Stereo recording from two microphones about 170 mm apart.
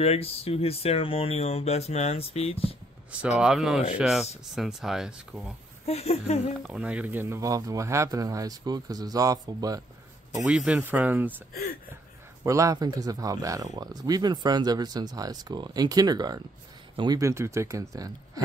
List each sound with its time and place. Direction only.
0.0 s speech: 35° left (ahead or behind)
3.1 s speech: 5° right (ahead or behind)
5.9 s speech: 35° left (ahead or behind)
6.6 s speech: 5° right (ahead or behind); by 9.8 s 20° right (ahead or behind)
10.4 s speech: 5° right (ahead or behind)
12.4 s speech: 20° right (ahead or behind)